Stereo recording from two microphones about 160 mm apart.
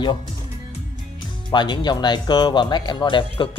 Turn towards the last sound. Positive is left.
turn(degrees=30)  # may be behind; listen again after turning